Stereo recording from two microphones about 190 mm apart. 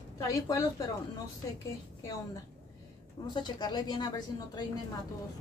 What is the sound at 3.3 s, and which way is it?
A woman's voice, 20° left (ahead or behind).